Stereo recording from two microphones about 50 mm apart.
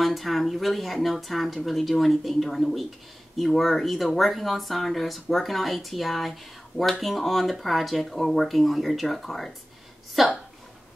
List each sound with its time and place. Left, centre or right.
0.0 s speech: centre